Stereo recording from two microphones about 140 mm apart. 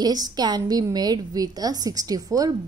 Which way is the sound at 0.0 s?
30° right (ahead or behind).